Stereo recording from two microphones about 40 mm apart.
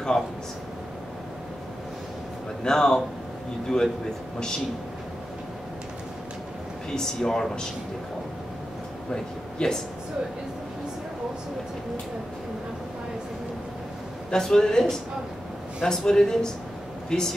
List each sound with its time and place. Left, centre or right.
2.6 s speech: centre
6.9 s speech: centre
9.1 s speech: centre
14.3 s speech: centre